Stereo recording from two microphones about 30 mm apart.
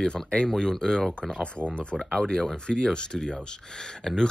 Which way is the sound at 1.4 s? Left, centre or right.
Left.